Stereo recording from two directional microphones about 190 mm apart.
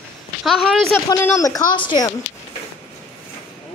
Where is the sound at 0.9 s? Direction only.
15° left (ahead or behind).